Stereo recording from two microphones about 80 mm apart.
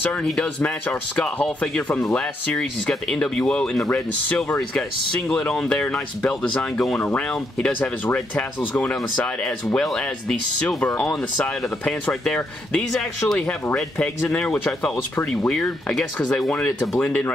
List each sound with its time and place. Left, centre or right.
0.0 s speech: centre
5.3 s speech: centre